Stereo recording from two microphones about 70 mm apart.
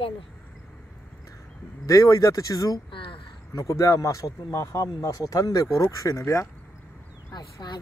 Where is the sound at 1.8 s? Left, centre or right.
Left.